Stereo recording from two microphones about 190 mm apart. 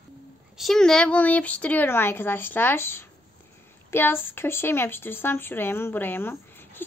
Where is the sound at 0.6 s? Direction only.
Centre (ahead or behind).